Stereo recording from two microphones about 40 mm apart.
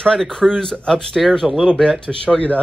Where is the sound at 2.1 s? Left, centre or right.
Left.